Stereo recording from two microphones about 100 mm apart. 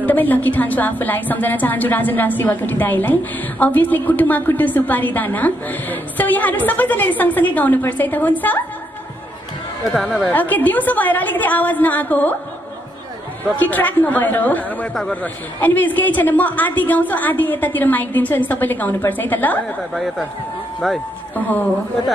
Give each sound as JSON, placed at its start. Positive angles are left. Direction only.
{"t": 0.0, "sound": "a woman's voice", "side_deg": 15}
{"t": 9.9, "sound": "speech", "side_deg": 0}
{"t": 10.3, "sound": "a woman's voice", "side_deg": 15}
{"t": 13.6, "sound": "a woman's voice", "side_deg": 15}
{"t": 19.9, "sound": "speech", "side_deg": 0}
{"t": 21.4, "sound": "a woman's voice", "side_deg": 15}